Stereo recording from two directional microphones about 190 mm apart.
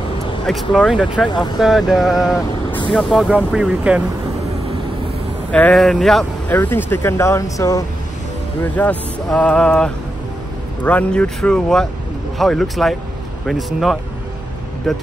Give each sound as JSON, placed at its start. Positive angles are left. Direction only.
{"t": 0.5, "sound": "speech", "side_deg": 0}
{"t": 1.3, "sound": "speech", "side_deg": 20}
{"t": 1.6, "sound": "speech", "side_deg": 0}
{"t": 5.5, "sound": "speech", "side_deg": 5}
{"t": 8.7, "sound": "speech", "side_deg": 10}